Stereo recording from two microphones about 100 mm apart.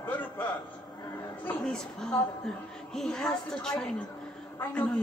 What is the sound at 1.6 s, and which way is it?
A woman's voice, 5° left (ahead or behind).